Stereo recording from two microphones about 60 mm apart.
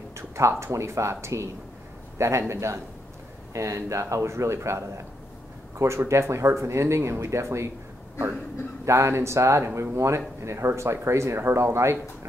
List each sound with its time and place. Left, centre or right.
0.1 s speech: right
8.8 s speech: right